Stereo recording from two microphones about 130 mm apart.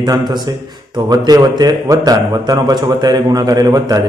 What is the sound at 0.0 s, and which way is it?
A man's voice, 35° right (ahead or behind).